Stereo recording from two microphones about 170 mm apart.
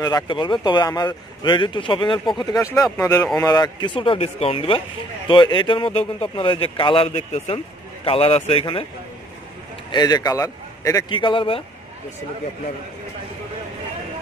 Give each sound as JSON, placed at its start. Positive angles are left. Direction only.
{"t": 0.0, "sound": "speech", "side_deg": 25}
{"t": 9.8, "sound": "speech", "side_deg": 25}